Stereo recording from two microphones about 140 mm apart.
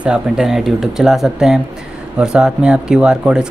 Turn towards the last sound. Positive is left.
turn(degrees=-5)  # may be behind; listen again after turning